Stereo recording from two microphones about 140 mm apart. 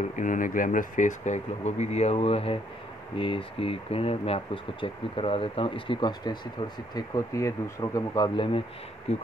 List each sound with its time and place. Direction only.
0.1 s speech: 65° left (ahead or behind); by 8.6 s 40° left (ahead or behind)
9.1 s speech: 50° left (ahead or behind)